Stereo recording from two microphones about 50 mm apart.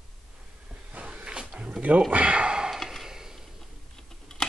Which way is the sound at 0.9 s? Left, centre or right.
Right.